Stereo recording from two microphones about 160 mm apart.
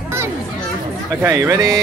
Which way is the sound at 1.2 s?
20° right (ahead or behind).